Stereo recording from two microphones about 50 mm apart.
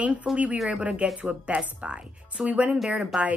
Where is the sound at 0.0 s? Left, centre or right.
Right.